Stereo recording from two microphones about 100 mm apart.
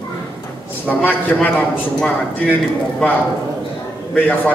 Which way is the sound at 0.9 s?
15° left (ahead or behind).